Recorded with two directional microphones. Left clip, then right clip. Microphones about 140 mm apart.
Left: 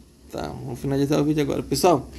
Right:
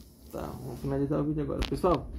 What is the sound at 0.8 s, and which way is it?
Speech, 90° left.